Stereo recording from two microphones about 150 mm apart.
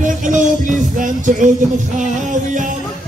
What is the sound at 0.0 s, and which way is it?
Music, 60° right (ahead or behind).